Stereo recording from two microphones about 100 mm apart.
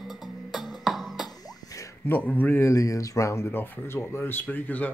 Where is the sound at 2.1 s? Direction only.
15° left (ahead or behind).